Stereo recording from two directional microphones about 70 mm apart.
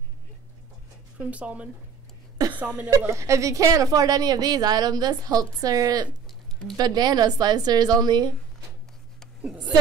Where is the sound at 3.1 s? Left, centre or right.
Right.